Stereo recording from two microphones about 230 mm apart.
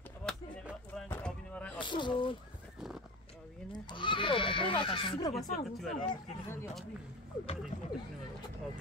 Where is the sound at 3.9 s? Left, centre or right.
Left.